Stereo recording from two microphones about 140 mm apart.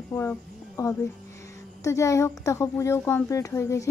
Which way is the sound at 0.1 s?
15° left (ahead or behind).